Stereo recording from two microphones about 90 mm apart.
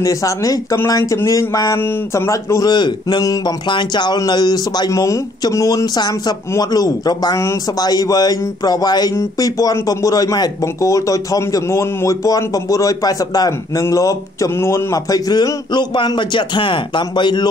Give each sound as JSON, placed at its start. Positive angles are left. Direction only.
{"t": 0.0, "sound": "speech", "side_deg": 40}
{"t": 2.6, "sound": "speech", "side_deg": 55}
{"t": 5.9, "sound": "speech", "side_deg": 50}